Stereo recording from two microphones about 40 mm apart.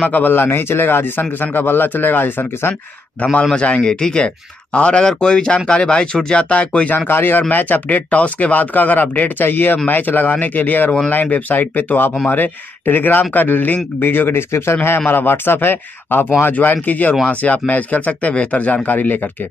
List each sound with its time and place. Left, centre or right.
0.2 s a man's voice: left
3.2 s speech: left
3.5 s speech: left
6.5 s speech: left
7.1 s a man's voice: left
9.4 s a man's voice: left
12.3 s speech: left
13.9 s a man's voice: left
15.0 s a man's voice: left
16.5 s speech: left